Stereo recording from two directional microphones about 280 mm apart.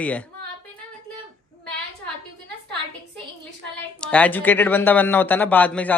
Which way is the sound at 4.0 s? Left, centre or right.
Centre.